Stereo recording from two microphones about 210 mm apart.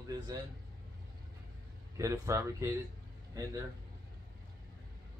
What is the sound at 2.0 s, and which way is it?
Speech, 15° right (ahead or behind).